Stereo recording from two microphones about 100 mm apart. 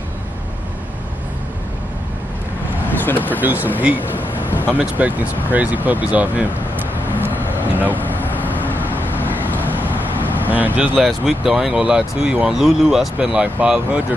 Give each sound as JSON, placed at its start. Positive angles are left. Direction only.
{"t": 2.9, "sound": "vehicle", "side_deg": 20}
{"t": 3.3, "sound": "speech", "side_deg": -15}
{"t": 4.7, "sound": "speech", "side_deg": -15}
{"t": 7.9, "sound": "vehicle", "side_deg": 20}
{"t": 9.3, "sound": "vehicle", "side_deg": -20}
{"t": 10.5, "sound": "speech", "side_deg": -15}
{"t": 11.1, "sound": "speech", "side_deg": -5}